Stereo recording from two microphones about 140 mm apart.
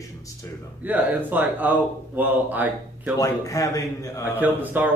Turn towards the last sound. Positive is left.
turn(degrees=-10)  # may be behind; listen again after turning